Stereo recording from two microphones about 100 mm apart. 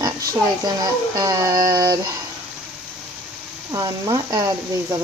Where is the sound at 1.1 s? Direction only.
40° right (ahead or behind).